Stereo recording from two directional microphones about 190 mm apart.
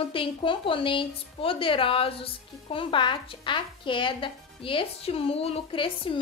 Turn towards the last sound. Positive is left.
turn(degrees=30)  # may be behind; listen again after turning